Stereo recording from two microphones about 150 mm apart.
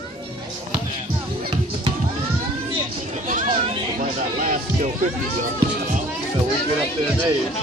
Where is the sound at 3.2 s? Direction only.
60° right (ahead or behind).